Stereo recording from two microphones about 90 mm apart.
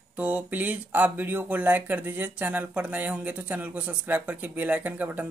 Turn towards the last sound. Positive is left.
turn(degrees=-20)  # may be behind; listen again after turning